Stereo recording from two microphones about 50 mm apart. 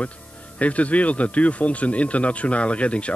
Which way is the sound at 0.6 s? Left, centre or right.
Left.